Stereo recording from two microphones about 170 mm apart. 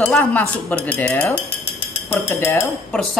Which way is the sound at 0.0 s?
10° left (ahead or behind).